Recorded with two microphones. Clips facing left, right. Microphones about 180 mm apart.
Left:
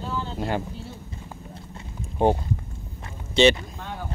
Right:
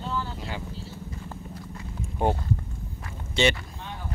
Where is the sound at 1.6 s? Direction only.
20° left (ahead or behind).